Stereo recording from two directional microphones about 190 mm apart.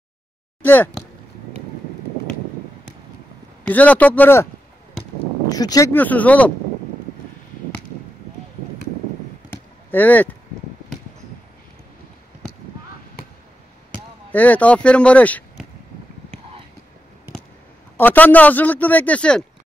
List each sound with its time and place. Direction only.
0.6 s speech: 10° left (ahead or behind)
3.6 s speech: 10° left (ahead or behind)
5.5 s speech: 20° left (ahead or behind)
5.9 s speech: 10° left (ahead or behind)
9.5 s a sound: 10° left (ahead or behind)
14.3 s speech: 10° left (ahead or behind)
17.9 s speech: 10° left (ahead or behind)